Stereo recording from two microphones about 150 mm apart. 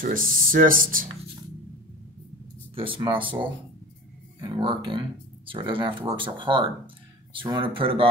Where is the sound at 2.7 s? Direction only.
35° right (ahead or behind).